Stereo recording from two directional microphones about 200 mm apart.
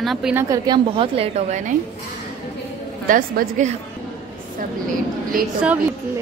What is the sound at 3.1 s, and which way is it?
Speech, 45° right (ahead or behind).